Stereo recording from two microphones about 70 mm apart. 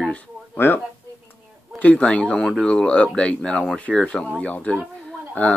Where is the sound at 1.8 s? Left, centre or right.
Centre.